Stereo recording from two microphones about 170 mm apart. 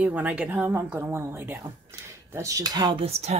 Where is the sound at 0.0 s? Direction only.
10° right (ahead or behind).